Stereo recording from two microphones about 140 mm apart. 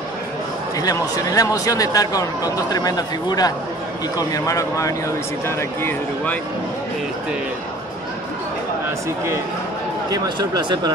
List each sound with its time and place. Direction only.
0.7 s speech: 25° left (ahead or behind)
10.1 s speech: 30° right (ahead or behind)